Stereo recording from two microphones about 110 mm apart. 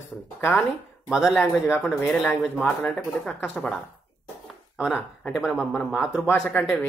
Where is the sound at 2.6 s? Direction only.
10° left (ahead or behind).